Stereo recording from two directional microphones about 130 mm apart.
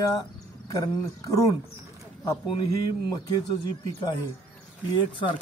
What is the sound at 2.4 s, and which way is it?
Speech, 35° left (ahead or behind).